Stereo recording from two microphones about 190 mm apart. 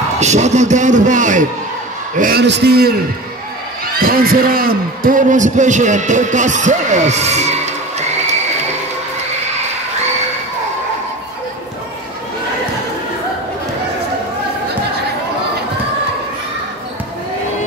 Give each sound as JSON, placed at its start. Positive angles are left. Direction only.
{"t": 0.2, "sound": "a man's voice", "side_deg": -35}
{"t": 2.4, "sound": "a man's voice", "side_deg": -60}